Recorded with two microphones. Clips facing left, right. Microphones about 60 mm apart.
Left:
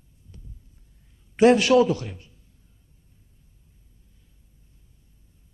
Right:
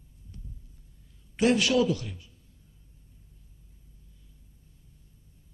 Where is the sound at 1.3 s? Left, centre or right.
Left.